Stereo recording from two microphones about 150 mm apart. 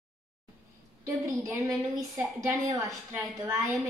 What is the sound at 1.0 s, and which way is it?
A woman's voice, 20° right (ahead or behind).